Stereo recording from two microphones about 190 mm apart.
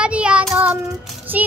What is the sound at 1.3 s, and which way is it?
Child singing, 10° right (ahead or behind).